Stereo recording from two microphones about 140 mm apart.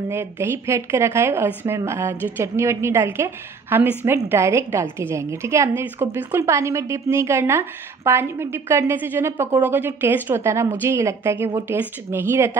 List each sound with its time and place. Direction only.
0.1 s a woman's voice: 15° right (ahead or behind)